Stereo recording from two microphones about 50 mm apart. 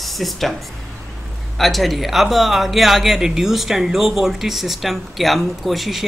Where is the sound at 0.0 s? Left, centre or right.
Centre.